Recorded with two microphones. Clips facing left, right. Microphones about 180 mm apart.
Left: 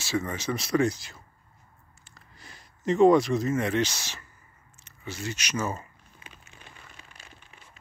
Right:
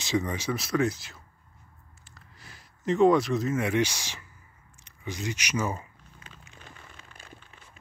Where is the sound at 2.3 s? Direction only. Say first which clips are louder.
Left 2 dB; 5° right (ahead or behind).